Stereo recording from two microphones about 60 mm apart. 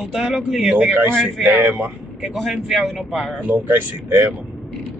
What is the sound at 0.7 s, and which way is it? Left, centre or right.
Speech, right.